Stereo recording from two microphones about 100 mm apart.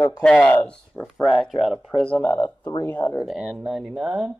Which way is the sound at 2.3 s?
40° left (ahead or behind).